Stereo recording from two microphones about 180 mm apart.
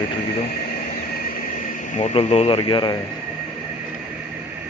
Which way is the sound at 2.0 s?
35° left (ahead or behind).